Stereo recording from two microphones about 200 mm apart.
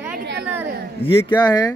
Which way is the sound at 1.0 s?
25° left (ahead or behind).